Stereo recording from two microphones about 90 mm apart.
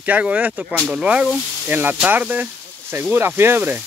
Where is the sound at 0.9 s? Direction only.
10° right (ahead or behind).